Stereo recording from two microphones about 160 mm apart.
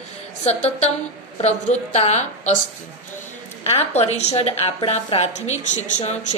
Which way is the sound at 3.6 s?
40° left (ahead or behind).